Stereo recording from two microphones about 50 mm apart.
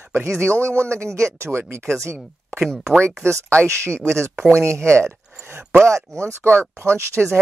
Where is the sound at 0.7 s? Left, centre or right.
Right.